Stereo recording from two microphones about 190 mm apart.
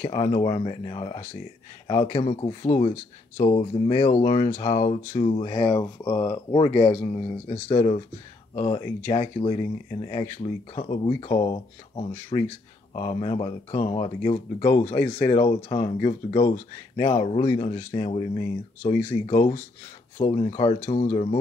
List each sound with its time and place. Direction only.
0.1 s speech: 30° left (ahead or behind)